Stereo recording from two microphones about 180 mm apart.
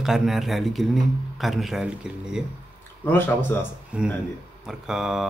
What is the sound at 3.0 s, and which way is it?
Speech, 10° left (ahead or behind).